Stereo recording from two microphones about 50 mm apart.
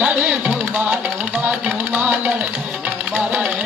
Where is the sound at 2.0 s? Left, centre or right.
Right.